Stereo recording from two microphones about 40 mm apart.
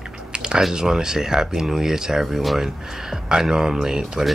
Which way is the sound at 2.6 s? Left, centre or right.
Centre.